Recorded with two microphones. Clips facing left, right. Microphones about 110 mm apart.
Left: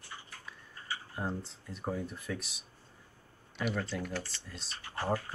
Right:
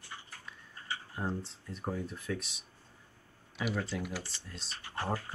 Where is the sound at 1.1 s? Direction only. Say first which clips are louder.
Right 1 dB; centre (ahead or behind).